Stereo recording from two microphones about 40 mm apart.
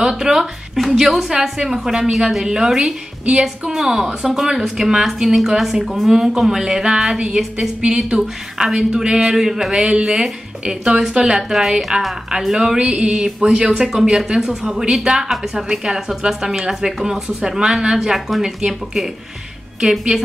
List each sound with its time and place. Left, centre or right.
0.2 s a woman's voice: centre
8.0 s speech: centre
8.6 s a woman's voice: centre
11.5 s a woman's voice: centre
12.7 s a woman's voice: right
17.9 s a woman's voice: centre